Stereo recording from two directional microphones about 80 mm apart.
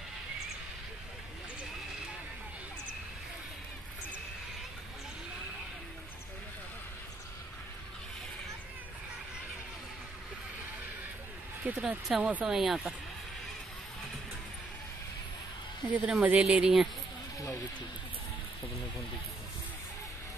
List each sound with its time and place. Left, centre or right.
11.6 s speech: right
12.4 s speech: centre
15.9 s speech: centre